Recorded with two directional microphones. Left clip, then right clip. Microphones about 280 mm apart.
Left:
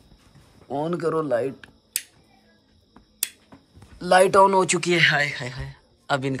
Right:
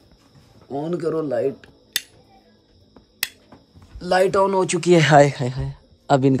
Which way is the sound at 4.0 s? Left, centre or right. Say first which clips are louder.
Left 2 dB; centre.